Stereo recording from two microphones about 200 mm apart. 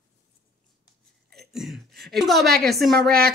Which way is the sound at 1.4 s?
Centre (ahead or behind).